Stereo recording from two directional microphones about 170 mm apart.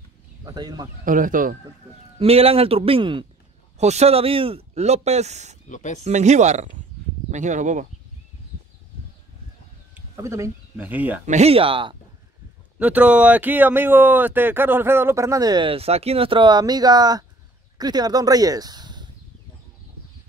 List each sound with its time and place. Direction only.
0.6 s speech: 25° right (ahead or behind)
1.0 s speech: 50° right (ahead or behind)
2.1 s speech: 35° right (ahead or behind)
3.7 s speech: 40° right (ahead or behind)
5.7 s speech: 45° left (ahead or behind)
6.0 s speech: 45° right (ahead or behind)
9.9 s speech: 15° right (ahead or behind)
11.2 s speech: 40° right (ahead or behind)
12.7 s speech: 10° right (ahead or behind); by 19.0 s 25° right (ahead or behind)